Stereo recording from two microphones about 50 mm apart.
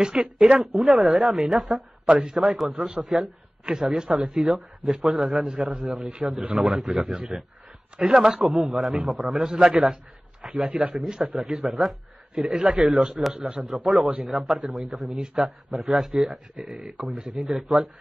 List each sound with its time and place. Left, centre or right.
0.0 s speech: centre
0.7 s a man's voice: centre
2.0 s a man's voice: centre
3.6 s a man's voice: centre
5.9 s speech: right
6.5 s a man's voice: centre
9.5 s speech: centre
10.5 s speech: right
11.1 s a man's voice: centre
12.4 s speech: centre
12.9 s a man's voice: centre
15.1 s a man's voice: centre